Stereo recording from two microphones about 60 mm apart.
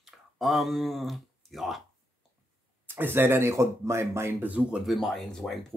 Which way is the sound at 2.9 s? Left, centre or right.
Right.